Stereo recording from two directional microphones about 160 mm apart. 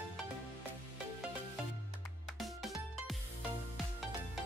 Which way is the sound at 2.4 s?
Centre (ahead or behind).